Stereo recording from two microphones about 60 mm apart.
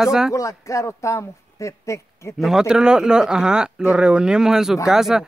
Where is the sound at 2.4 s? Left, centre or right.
Centre.